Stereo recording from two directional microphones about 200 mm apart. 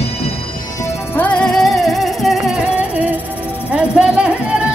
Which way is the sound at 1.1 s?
5° left (ahead or behind).